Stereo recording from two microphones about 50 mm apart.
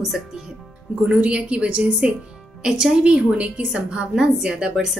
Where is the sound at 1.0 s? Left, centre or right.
Right.